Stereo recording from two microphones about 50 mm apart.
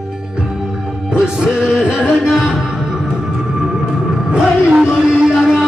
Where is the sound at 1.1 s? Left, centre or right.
Centre.